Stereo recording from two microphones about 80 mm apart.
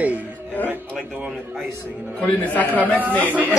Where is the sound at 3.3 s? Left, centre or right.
Right.